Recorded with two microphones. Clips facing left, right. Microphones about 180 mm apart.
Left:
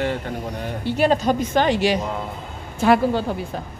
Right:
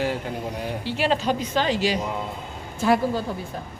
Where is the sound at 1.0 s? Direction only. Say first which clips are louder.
Left 5 dB; 45° left (ahead or behind); by 3.3 s 65° left (ahead or behind).